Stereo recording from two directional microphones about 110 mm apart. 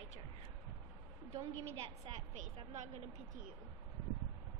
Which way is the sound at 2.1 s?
50° right (ahead or behind).